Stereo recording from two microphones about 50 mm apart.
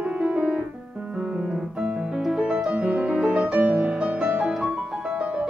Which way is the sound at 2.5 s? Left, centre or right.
Right.